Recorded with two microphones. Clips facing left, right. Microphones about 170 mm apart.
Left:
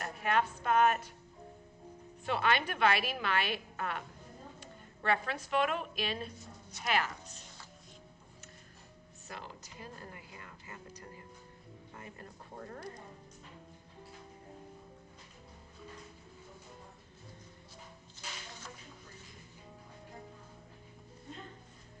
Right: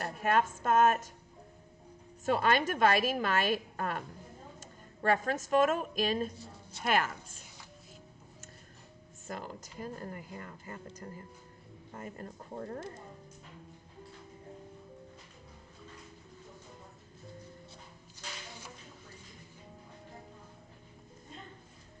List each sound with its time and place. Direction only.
0.0 s a woman's voice: 45° right (ahead or behind)
2.2 s a woman's voice: 45° right (ahead or behind)
9.3 s a woman's voice: 45° right (ahead or behind)
11.9 s speech: 40° right (ahead or behind)